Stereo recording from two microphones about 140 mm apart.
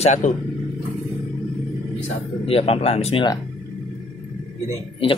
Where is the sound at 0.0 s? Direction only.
60° left (ahead or behind).